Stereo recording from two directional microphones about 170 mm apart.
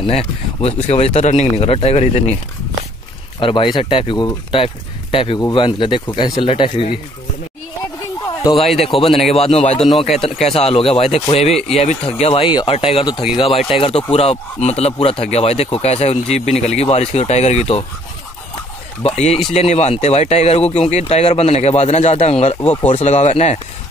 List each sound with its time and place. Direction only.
0.0 s speech: 35° left (ahead or behind)
3.3 s speech: 30° left (ahead or behind)
8.9 s a man's voice: centre (ahead or behind)
9.3 s speech: 35° left (ahead or behind)
19.0 s speech: 40° left (ahead or behind)
22.6 s speech: 15° left (ahead or behind)
22.8 s speech: 40° left (ahead or behind)